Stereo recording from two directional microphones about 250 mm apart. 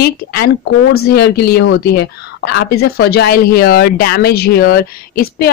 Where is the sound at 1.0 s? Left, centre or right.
Left.